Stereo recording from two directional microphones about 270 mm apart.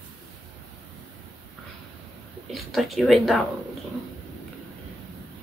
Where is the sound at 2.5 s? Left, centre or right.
Centre.